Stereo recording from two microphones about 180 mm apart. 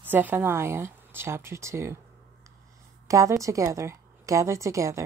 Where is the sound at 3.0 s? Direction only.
15° right (ahead or behind).